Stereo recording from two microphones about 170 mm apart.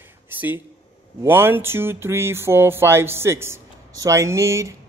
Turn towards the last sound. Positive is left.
turn(degrees=-15)  # may be behind; listen again after turning